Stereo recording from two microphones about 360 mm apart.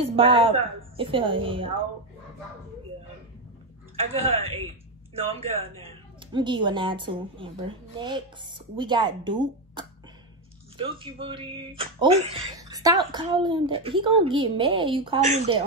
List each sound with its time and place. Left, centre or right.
0.0 s speech: centre
4.0 s speech: centre